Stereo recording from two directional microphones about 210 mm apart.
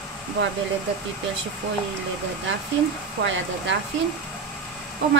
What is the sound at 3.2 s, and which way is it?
Speech, 65° right (ahead or behind).